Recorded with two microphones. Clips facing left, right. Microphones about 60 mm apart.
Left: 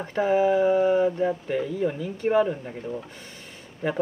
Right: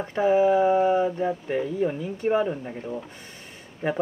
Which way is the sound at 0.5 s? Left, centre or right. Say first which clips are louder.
Right 1 dB; right.